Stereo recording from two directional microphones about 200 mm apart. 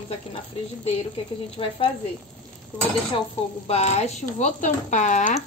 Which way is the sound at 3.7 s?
35° left (ahead or behind).